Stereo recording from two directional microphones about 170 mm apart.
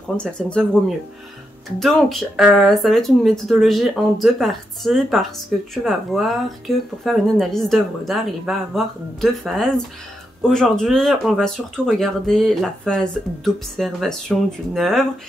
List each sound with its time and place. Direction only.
0.2 s speech: 5° left (ahead or behind)